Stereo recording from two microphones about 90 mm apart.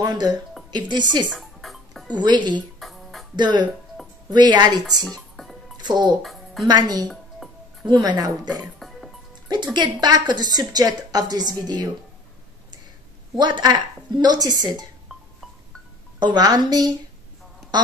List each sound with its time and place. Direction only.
0.0 s a woman's voice: 50° right (ahead or behind)
1.3 s music: centre (ahead or behind)
2.1 s speech: 55° right (ahead or behind)
2.8 s music: centre (ahead or behind)
3.3 s a woman's voice: 55° right (ahead or behind)
5.0 s music: 5° left (ahead or behind)
5.8 s a child's voice: 55° right (ahead or behind)
6.2 s music: centre (ahead or behind)
6.7 s a woman's voice: 50° right (ahead or behind)
8.7 s music: centre (ahead or behind)
9.8 s a woman's voice: 50° right (ahead or behind)
13.4 s a woman's voice: 55° right (ahead or behind)
16.2 s a woman's voice: 50° right (ahead or behind)